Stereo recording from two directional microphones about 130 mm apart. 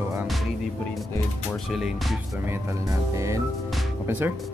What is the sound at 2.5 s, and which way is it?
Speech, 25° right (ahead or behind).